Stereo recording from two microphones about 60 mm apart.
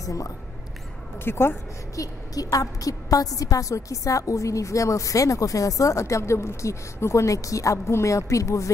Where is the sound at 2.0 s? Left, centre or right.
Left.